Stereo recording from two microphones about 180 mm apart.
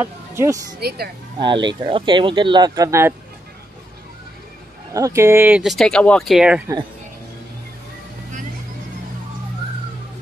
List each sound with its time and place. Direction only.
0.0 s speech: 15° right (ahead or behind)
0.7 s speech: 60° right (ahead or behind)
1.4 s speech: 25° right (ahead or behind)
4.9 s speech: 15° right (ahead or behind)